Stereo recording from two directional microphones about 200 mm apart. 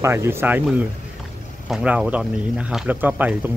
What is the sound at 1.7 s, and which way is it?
Speech, 5° right (ahead or behind).